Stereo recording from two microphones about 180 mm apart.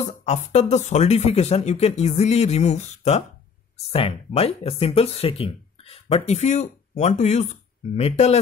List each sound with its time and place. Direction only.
0.0 s speech: 40° left (ahead or behind)